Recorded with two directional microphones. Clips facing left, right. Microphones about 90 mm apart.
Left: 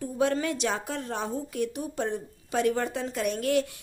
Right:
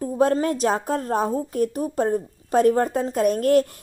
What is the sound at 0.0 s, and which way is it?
A woman's voice, 40° right (ahead or behind).